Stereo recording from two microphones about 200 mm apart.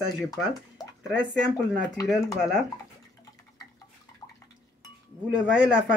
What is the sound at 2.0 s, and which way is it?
Speech, 15° left (ahead or behind).